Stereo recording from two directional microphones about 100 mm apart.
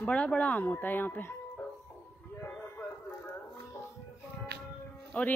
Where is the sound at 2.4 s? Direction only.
20° left (ahead or behind).